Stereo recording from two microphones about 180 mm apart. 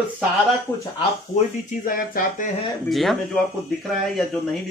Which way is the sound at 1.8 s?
50° left (ahead or behind).